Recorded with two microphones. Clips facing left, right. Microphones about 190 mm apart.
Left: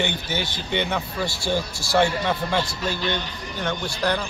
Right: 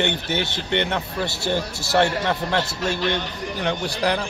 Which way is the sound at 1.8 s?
20° right (ahead or behind).